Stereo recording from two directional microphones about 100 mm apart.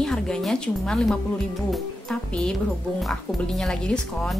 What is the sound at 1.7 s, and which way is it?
Speech, 5° left (ahead or behind).